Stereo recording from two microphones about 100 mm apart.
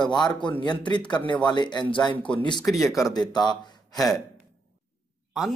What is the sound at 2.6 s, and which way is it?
Speech, centre (ahead or behind).